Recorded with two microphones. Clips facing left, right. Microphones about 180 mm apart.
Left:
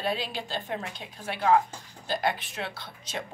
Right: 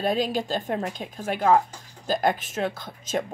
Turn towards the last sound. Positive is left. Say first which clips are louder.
# right 8 dB
turn(degrees=-45)  # may be behind; listen again after turning